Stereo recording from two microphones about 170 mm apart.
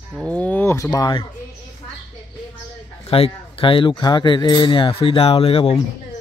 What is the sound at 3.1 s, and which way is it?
Speech, 35° left (ahead or behind).